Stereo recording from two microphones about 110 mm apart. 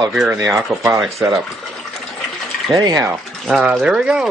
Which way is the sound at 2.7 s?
35° right (ahead or behind).